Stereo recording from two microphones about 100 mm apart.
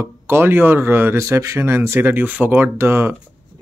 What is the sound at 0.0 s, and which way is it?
Speech, 25° right (ahead or behind).